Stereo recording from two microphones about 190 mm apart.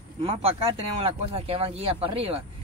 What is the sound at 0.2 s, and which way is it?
Speech, 30° right (ahead or behind).